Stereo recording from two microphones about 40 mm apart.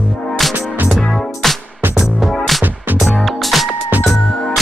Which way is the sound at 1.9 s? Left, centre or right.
Centre.